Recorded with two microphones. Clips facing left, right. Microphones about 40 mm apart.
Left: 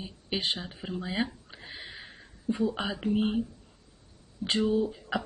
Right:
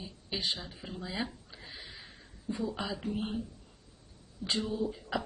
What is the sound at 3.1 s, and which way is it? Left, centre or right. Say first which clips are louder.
Speech: left 12 dB; left.